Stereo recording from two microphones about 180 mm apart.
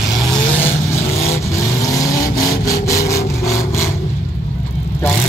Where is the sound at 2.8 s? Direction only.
15° left (ahead or behind).